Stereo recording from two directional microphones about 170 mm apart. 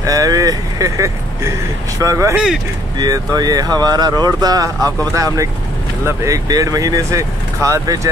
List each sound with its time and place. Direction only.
0.0 s speech: 20° right (ahead or behind)
2.3 s speech: 5° right (ahead or behind)
3.0 s speech: 25° right (ahead or behind)